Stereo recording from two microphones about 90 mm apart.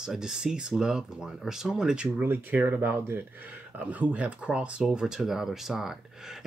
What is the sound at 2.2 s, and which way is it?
Speech, 20° right (ahead or behind).